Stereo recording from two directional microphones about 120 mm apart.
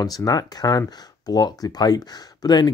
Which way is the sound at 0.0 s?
30° left (ahead or behind).